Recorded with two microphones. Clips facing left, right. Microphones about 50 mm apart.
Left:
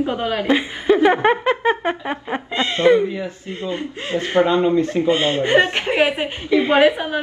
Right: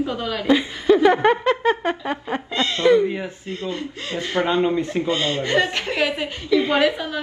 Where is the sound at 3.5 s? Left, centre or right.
Left.